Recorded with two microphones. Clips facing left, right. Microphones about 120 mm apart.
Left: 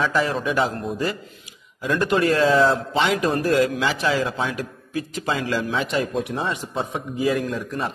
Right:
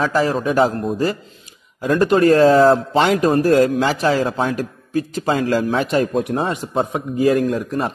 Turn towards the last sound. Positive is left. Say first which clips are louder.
# right 6 dB
turn(degrees=-45)  # may be behind; listen again after turning